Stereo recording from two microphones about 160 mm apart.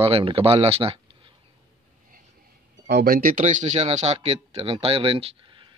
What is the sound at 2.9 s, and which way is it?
Speech, 75° right (ahead or behind).